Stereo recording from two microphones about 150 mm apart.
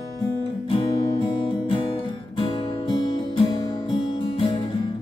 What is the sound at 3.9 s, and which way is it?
Music, 35° left (ahead or behind).